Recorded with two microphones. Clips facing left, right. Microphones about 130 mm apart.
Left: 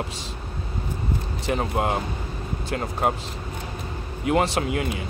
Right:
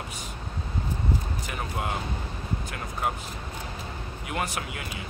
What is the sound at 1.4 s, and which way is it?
Speech, 30° left (ahead or behind).